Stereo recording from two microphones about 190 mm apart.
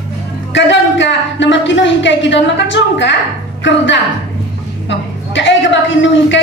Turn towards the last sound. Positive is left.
turn(degrees=75)  # may be behind; listen again after turning